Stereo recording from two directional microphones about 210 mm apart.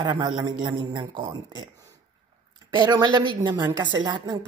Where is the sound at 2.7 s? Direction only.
20° right (ahead or behind).